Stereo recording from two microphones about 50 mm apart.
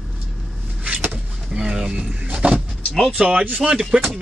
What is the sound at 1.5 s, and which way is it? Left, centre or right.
A man's voice, centre.